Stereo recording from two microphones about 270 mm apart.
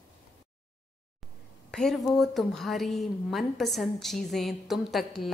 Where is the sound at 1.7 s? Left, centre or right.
Centre.